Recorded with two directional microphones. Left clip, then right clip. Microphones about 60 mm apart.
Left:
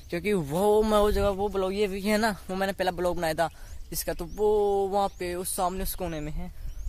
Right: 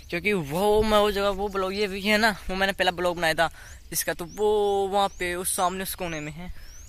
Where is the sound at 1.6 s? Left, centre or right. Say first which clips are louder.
Even; left.